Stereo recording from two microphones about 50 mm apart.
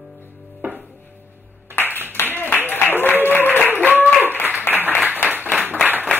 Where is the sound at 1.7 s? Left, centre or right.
Left.